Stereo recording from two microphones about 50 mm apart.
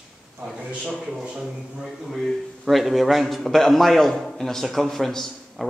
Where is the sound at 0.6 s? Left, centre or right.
Right.